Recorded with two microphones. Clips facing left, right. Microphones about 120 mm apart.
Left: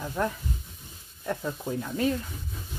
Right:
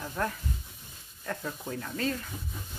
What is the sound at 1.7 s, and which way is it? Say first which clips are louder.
Speech: left 5 dB; 15° left (ahead or behind).